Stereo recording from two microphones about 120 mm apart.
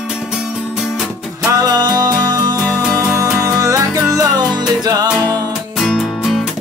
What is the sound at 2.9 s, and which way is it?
Music, 25° right (ahead or behind).